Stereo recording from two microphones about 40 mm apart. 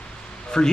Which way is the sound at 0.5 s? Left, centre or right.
Centre.